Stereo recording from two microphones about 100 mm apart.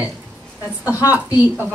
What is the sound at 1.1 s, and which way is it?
Speech, 20° right (ahead or behind).